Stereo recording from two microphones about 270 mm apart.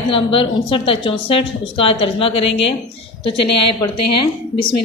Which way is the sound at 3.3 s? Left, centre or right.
Left.